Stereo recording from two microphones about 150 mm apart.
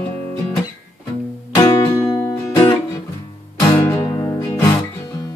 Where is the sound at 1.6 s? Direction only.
25° left (ahead or behind).